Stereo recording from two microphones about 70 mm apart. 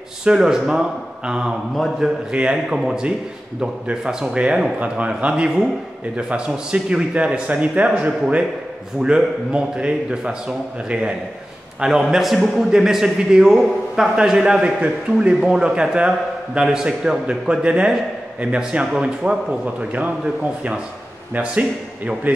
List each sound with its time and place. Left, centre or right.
0.2 s a man's voice: centre
21.3 s speech: centre